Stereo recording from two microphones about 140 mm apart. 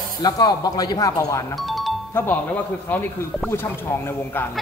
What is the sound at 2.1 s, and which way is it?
Speech, 15° left (ahead or behind).